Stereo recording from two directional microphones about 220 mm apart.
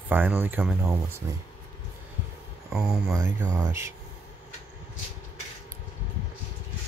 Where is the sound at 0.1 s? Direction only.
10° right (ahead or behind).